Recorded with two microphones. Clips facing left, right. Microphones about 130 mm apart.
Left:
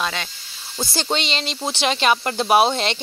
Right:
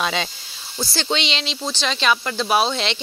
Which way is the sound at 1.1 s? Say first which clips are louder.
Even; 45° left (ahead or behind).